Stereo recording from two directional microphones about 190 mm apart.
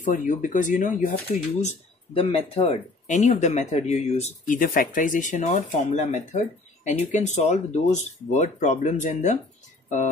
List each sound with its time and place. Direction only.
0.0 s speech: 45° left (ahead or behind)
2.1 s speech: 30° left (ahead or behind)